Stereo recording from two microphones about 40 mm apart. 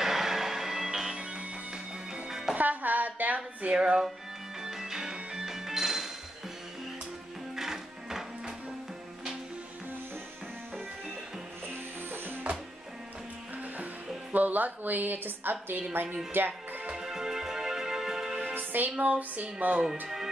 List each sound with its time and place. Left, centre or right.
0.0 s music: centre
1.1 s music: right
2.2 s music: centre
2.5 s a sound: right
3.3 s a sound: right
4.6 s music: centre
5.5 s music: centre
7.5 s music: centre
11.6 s music: right
14.3 s a woman's voice: right
16.3 s music: right
16.9 s music: centre
18.5 s music: right
18.9 s a sound: right